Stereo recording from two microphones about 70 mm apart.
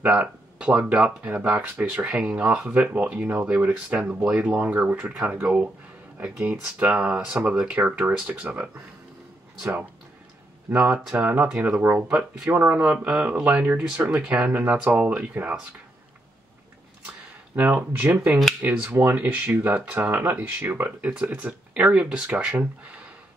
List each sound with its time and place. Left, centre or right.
0.0 s speech: centre
10.7 s speech: centre
17.5 s speech: right
17.9 s speech: right